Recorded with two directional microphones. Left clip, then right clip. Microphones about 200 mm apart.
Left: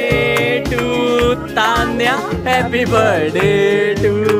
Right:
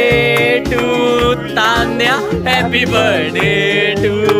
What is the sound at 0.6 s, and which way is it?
Music, centre (ahead or behind).